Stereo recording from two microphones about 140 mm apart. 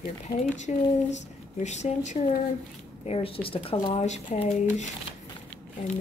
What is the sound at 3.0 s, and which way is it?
Speech, 40° left (ahead or behind).